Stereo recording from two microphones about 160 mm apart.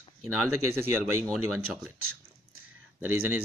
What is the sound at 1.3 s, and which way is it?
Speech, centre (ahead or behind).